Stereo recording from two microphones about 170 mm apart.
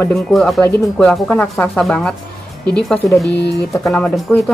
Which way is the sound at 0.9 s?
5° left (ahead or behind).